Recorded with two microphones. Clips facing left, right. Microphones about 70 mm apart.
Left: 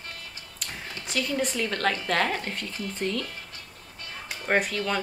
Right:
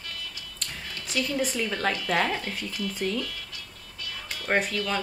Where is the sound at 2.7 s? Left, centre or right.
Left.